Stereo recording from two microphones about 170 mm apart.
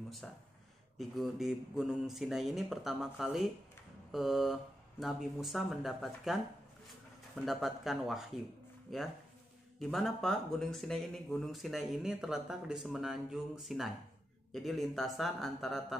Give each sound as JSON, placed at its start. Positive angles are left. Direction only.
{"t": 0.2, "sound": "speech", "side_deg": 5}
{"t": 7.3, "sound": "speech", "side_deg": 0}